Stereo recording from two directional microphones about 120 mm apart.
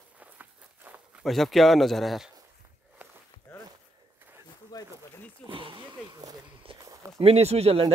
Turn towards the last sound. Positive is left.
turn(degrees=-55)  # may be behind; listen again after turning